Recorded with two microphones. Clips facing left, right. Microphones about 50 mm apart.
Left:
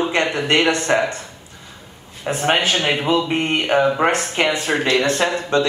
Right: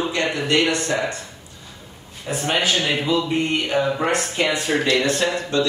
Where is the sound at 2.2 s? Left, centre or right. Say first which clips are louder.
Left 4 dB; left.